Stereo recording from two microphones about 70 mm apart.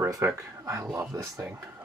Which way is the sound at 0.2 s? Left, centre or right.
Right.